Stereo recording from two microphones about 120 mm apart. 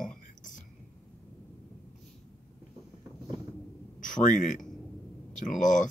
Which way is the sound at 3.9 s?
90° left.